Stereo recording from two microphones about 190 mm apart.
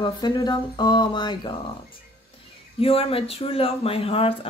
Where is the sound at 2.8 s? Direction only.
30° left (ahead or behind).